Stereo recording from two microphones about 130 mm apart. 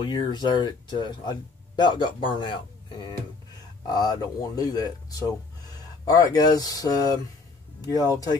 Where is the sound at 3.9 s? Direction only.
30° left (ahead or behind).